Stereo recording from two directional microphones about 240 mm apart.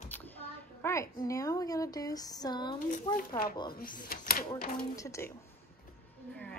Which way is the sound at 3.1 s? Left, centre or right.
Left.